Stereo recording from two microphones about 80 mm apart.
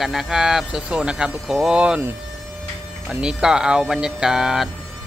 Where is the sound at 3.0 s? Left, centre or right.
Centre.